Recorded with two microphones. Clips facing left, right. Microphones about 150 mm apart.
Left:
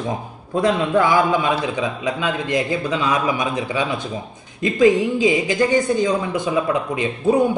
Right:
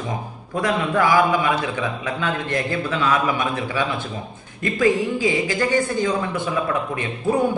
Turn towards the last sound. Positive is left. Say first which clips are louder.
# left 4 dB
turn(degrees=15)  # may be behind; listen again after turning